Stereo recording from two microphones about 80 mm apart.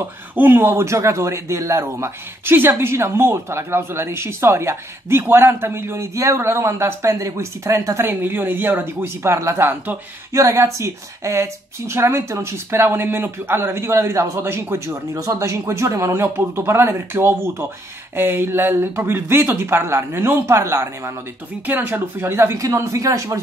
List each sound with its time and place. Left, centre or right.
0.4 s a woman's voice: right
10.3 s a woman's voice: right